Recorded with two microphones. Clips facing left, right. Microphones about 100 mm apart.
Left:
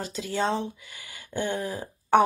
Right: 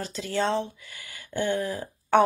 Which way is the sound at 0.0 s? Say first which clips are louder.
Even; 15° left (ahead or behind).